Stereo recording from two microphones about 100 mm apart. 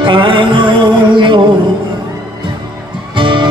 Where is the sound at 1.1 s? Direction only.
55° right (ahead or behind).